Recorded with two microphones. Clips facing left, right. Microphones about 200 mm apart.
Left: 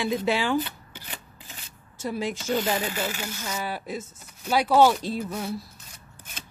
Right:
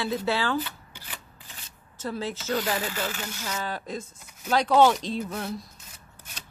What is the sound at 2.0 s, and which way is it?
Speech, 15° left (ahead or behind).